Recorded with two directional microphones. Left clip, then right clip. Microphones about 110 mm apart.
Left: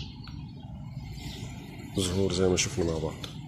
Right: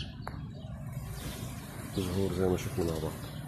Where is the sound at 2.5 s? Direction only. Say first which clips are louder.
Left 5 dB; 15° left (ahead or behind).